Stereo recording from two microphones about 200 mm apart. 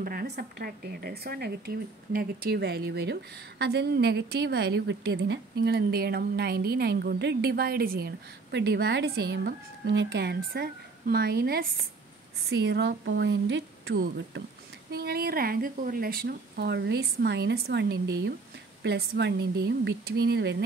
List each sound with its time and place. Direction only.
0.0 s a woman's voice: 45° right (ahead or behind)